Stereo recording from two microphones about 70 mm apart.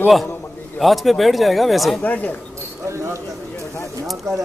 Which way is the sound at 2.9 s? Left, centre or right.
Right.